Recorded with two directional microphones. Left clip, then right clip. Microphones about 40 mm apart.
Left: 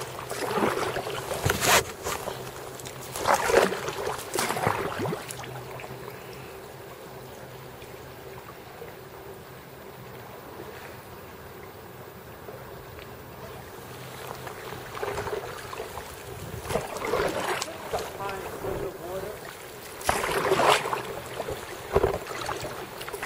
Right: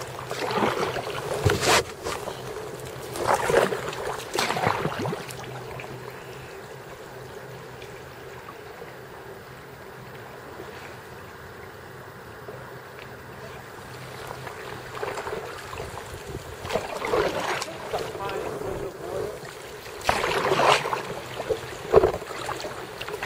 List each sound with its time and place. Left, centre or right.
0.3 s boat: right
1.2 s boat: centre
3.2 s boat: centre
4.3 s boat: right
4.9 s a sound: right
14.4 s boat: centre
16.7 s boat: right
18.3 s boat: centre
20.0 s boat: right
21.0 s a sound: centre